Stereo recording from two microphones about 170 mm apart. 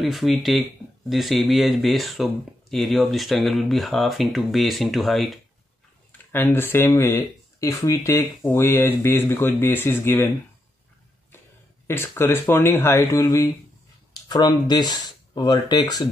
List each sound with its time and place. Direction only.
0.0 s speech: centre (ahead or behind)
6.3 s speech: 15° left (ahead or behind)
11.9 s speech: 15° left (ahead or behind)